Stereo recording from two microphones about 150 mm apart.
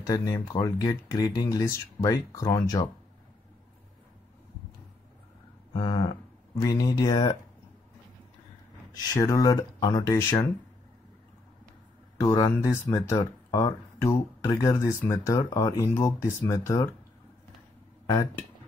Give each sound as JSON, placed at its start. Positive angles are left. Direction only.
{"t": 0.0, "sound": "speech", "side_deg": 25}
{"t": 5.7, "sound": "speech", "side_deg": 30}
{"t": 8.9, "sound": "speech", "side_deg": 25}
{"t": 12.2, "sound": "speech", "side_deg": 25}